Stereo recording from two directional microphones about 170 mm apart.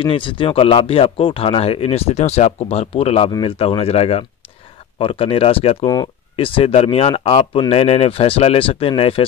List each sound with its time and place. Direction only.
0.0 s speech: 30° left (ahead or behind)